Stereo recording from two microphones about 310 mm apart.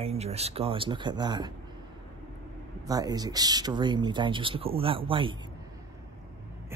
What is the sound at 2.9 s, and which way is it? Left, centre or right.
Speech, centre.